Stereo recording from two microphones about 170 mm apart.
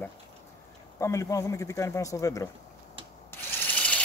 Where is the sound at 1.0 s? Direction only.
15° left (ahead or behind).